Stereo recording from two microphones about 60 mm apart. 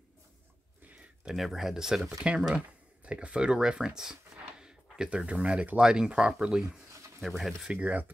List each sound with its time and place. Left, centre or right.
1.3 s speech: centre
2.2 s speech: centre
6.6 s a sound: right
7.2 s speech: centre
7.6 s speech: right